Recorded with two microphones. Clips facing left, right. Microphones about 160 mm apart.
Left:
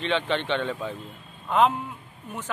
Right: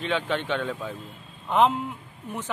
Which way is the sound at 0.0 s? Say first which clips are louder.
Left 1 dB; 5° right (ahead or behind).